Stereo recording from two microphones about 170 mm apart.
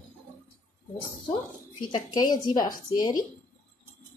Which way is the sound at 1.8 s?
25° left (ahead or behind).